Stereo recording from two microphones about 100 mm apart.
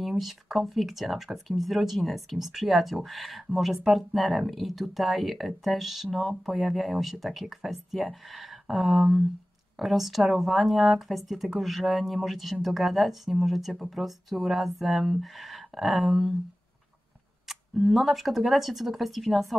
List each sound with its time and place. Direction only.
0.2 s speech: centre (ahead or behind)
17.5 s camera: centre (ahead or behind)
17.8 s speech: centre (ahead or behind)